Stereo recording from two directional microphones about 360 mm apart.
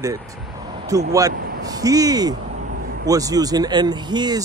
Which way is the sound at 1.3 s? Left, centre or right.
Right.